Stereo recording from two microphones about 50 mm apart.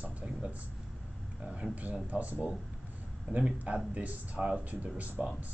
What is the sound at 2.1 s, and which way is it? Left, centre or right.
Speech, right.